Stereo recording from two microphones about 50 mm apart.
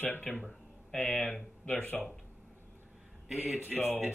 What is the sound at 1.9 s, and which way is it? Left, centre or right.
Speech, centre.